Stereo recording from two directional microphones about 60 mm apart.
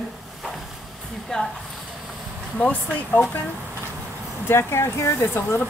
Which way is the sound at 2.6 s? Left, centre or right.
Left.